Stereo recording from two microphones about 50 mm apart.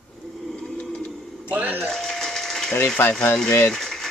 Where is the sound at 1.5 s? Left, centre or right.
Right.